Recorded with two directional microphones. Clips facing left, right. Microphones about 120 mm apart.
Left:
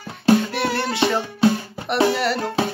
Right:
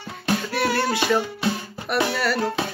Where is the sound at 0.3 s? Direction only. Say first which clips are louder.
Left 5 dB; 25° left (ahead or behind).